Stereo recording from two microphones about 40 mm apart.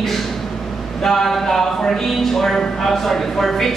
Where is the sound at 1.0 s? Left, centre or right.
Centre.